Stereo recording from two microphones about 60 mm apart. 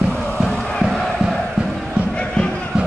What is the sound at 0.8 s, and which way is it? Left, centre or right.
Crowd, centre.